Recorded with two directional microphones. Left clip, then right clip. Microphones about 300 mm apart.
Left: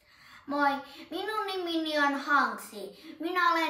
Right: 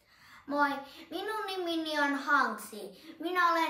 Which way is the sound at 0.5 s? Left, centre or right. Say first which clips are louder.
Left 2 dB; centre.